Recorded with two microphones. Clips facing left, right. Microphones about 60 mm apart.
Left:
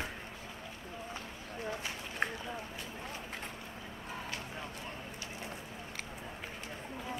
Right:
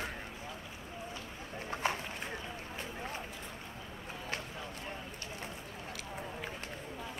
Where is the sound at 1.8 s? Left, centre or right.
Right.